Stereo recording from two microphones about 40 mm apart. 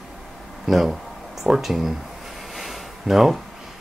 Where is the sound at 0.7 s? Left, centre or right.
Centre.